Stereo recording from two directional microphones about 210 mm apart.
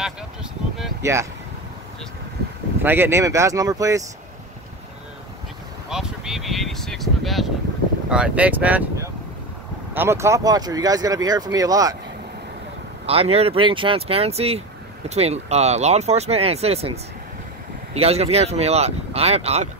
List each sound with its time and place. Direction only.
0.0 s a sound: centre (ahead or behind)
2.8 s speech: 10° right (ahead or behind)
5.9 s speech: centre (ahead or behind)
13.0 s speech: 30° right (ahead or behind)